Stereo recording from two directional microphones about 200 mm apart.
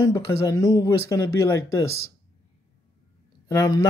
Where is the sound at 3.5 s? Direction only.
15° left (ahead or behind).